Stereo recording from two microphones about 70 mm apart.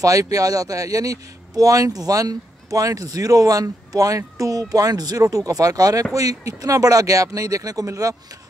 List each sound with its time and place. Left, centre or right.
0.0 s speech: right